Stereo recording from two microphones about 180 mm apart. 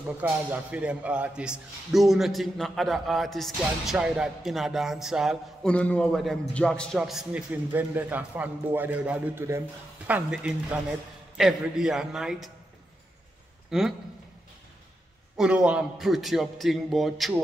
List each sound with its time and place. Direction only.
0.2 s a man's voice: 10° right (ahead or behind)
13.7 s a man's voice: centre (ahead or behind)
15.3 s speech: 5° right (ahead or behind)